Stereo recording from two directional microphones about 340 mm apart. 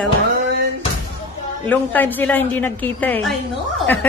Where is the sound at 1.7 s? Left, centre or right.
Centre.